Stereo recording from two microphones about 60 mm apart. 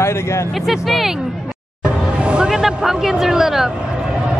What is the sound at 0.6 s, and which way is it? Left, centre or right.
Speech, centre.